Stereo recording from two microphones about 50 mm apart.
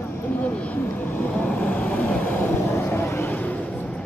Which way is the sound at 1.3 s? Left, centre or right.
Left.